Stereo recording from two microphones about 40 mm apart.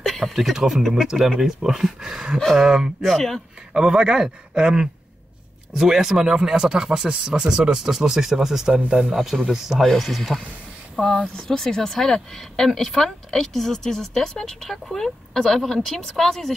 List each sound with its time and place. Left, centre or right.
0.0 s a sound: centre
0.3 s speech: centre
3.0 s speech: centre
3.7 s speech: centre
11.3 s speech: centre